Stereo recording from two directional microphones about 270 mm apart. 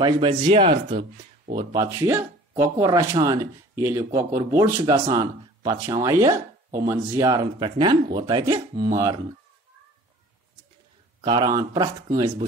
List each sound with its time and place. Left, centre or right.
0.0 s speech: centre
11.1 s speech: centre